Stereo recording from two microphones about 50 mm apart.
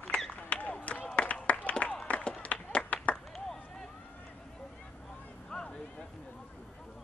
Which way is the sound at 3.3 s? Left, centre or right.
Centre.